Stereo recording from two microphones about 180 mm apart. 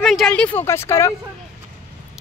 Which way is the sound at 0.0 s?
Centre (ahead or behind).